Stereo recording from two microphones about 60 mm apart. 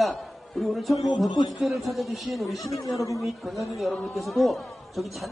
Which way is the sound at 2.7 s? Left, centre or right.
Left.